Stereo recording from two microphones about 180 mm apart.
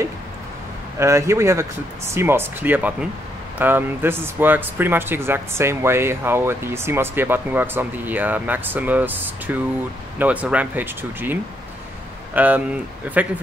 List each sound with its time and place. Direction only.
0.9 s speech: 15° right (ahead or behind)
12.4 s speech: 10° right (ahead or behind)